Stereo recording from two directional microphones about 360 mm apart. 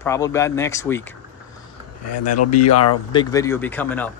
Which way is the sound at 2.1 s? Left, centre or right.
Left.